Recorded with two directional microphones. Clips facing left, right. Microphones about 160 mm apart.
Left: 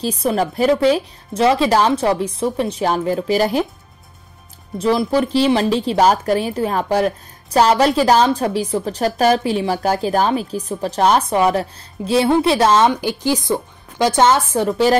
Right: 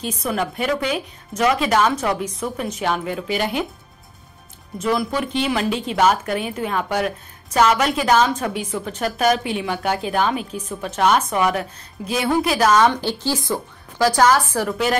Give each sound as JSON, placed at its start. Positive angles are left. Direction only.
{"t": 0.0, "sound": "a woman's voice", "side_deg": 35}
{"t": 4.7, "sound": "a woman's voice", "side_deg": 30}
{"t": 12.9, "sound": "speech", "side_deg": 15}